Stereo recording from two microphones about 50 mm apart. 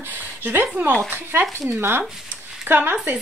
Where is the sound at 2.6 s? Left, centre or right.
Right.